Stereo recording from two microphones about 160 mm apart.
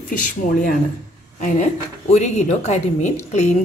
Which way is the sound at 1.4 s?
45° left (ahead or behind).